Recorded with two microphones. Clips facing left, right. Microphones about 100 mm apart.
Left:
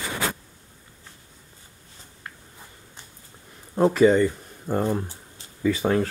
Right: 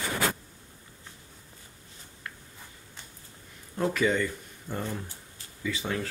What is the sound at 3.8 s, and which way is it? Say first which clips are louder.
Speech: left 9 dB; 35° left (ahead or behind).